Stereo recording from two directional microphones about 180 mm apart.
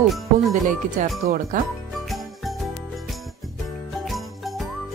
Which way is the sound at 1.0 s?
45° right (ahead or behind).